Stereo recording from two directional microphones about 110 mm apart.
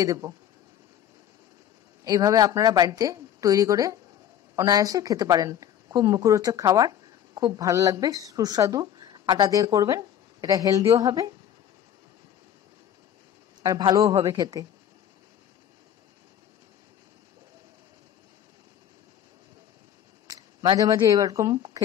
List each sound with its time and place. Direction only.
0.0 s a woman's voice: 30° right (ahead or behind)
2.0 s a woman's voice: 35° right (ahead or behind)
13.6 s a woman's voice: 40° right (ahead or behind)
20.2 s a sound: 35° right (ahead or behind)
21.1 s a woman's voice: 30° right (ahead or behind)